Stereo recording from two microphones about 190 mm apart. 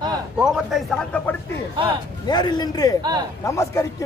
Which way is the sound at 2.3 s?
20° left (ahead or behind).